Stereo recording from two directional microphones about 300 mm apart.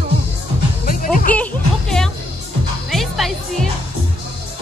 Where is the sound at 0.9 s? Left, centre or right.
Left.